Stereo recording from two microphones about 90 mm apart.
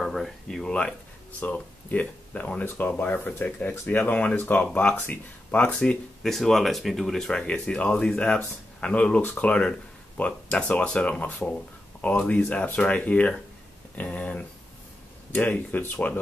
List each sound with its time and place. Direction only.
0.0 s speech: centre (ahead or behind); by 16.2 s 20° left (ahead or behind)